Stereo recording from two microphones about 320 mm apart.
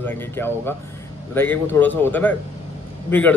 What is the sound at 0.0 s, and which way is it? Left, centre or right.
A man's voice, centre.